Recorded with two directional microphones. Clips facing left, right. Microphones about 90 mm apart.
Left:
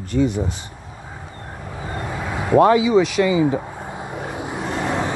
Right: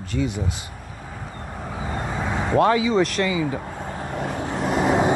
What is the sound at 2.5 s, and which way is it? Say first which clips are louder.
Speech: left 5 dB; 20° left (ahead or behind).